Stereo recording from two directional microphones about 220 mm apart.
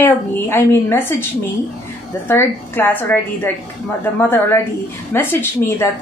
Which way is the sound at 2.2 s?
10° left (ahead or behind).